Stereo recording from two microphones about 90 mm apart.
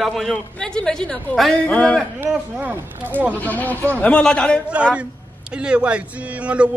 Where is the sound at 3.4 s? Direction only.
20° left (ahead or behind).